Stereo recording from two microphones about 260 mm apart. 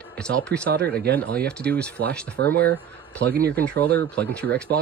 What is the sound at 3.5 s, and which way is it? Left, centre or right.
Speech, centre.